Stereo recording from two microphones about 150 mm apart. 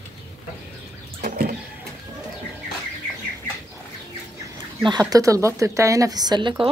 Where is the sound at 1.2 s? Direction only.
70° right (ahead or behind).